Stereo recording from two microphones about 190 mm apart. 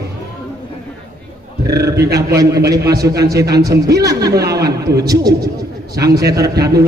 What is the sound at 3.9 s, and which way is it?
Speech, 20° right (ahead or behind).